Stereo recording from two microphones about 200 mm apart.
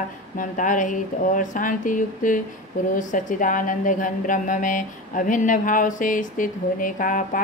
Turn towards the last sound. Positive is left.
turn(degrees=45)  # may be behind; listen again after turning